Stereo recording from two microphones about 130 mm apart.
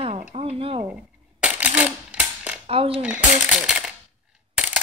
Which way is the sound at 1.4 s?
10° right (ahead or behind).